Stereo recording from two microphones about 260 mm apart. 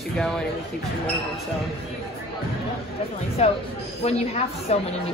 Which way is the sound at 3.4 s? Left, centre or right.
Left.